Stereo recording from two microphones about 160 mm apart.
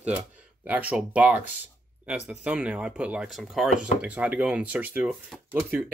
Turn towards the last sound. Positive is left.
turn(degrees=-10)  # may be behind; listen again after turning